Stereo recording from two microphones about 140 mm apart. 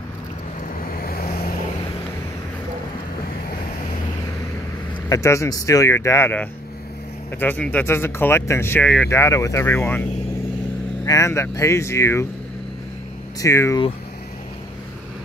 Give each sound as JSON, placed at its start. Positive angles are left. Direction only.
{"t": 0.9, "sound": "vehicle", "side_deg": 90}
{"t": 5.1, "sound": "speech", "side_deg": 20}
{"t": 9.1, "sound": "speech", "side_deg": 20}
{"t": 11.1, "sound": "speech", "side_deg": 20}
{"t": 13.4, "sound": "speech", "side_deg": 20}